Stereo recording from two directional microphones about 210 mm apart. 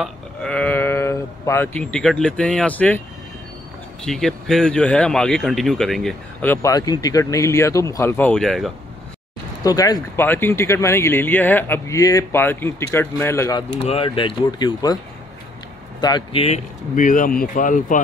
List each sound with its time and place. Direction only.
0.0 s speech: 5° left (ahead or behind)
4.0 s speech: centre (ahead or behind)
9.6 s speech: 15° left (ahead or behind)
13.8 s speech: 25° left (ahead or behind)
16.0 s speech: 20° left (ahead or behind); by 18.0 s 40° left (ahead or behind)